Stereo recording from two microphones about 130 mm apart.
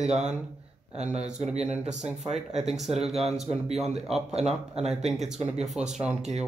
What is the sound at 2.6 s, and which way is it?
Speech, centre (ahead or behind).